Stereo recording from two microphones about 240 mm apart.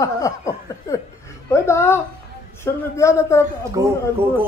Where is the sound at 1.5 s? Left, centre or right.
Centre.